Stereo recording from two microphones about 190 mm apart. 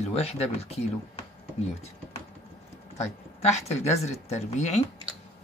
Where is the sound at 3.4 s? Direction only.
35° left (ahead or behind).